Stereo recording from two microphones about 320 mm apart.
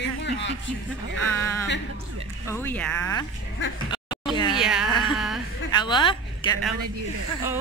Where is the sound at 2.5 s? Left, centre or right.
Centre.